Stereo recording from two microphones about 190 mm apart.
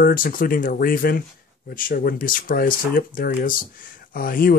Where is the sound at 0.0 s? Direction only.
45° left (ahead or behind).